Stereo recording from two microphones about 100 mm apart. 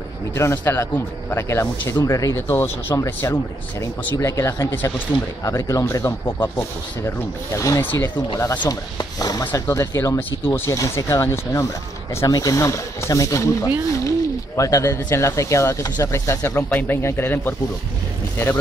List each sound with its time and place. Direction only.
0.3 s speech: 25° left (ahead or behind)
7.8 s speech: 20° left (ahead or behind)
8.4 s speech: 30° left (ahead or behind)
9.4 s speech: 20° left (ahead or behind)
10.7 s speech: 30° left (ahead or behind)